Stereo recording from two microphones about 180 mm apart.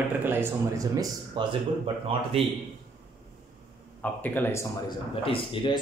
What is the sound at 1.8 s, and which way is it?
Speech, 30° right (ahead or behind).